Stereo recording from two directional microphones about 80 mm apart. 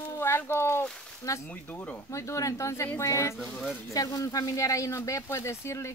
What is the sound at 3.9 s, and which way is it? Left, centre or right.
Speech, left.